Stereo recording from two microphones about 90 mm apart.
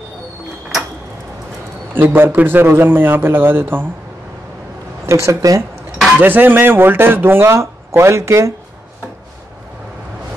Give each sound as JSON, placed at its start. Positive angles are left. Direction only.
{"t": 2.0, "sound": "speech", "side_deg": -25}
{"t": 5.0, "sound": "speech", "side_deg": -35}
{"t": 6.1, "sound": "speech", "side_deg": -20}